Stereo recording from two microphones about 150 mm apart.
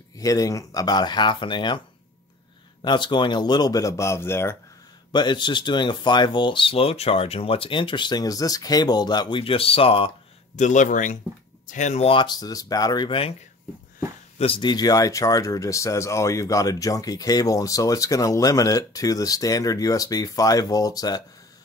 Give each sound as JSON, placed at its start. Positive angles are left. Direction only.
{"t": 0.2, "sound": "speech", "side_deg": 25}
{"t": 2.8, "sound": "speech", "side_deg": 30}
{"t": 5.1, "sound": "speech", "side_deg": 30}
{"t": 10.6, "sound": "speech", "side_deg": 55}
{"t": 12.1, "sound": "speech", "side_deg": 30}
{"t": 14.4, "sound": "speech", "side_deg": 35}